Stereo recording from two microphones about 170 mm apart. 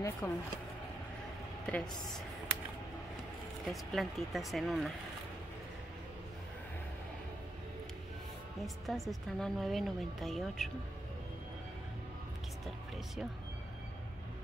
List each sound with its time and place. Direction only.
0.2 s speech: 20° left (ahead or behind)
1.7 s a woman's voice: centre (ahead or behind)
3.7 s a woman's voice: centre (ahead or behind)
8.5 s a woman's voice: centre (ahead or behind)
12.6 s music: centre (ahead or behind)